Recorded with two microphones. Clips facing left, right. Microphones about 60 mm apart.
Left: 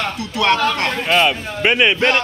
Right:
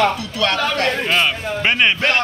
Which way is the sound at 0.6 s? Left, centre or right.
Centre.